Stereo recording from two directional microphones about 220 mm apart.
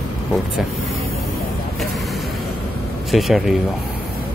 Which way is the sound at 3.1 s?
Centre (ahead or behind).